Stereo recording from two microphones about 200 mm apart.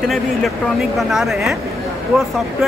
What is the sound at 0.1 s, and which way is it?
Speech, centre (ahead or behind).